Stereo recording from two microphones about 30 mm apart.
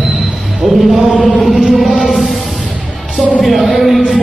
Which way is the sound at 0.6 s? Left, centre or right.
Centre.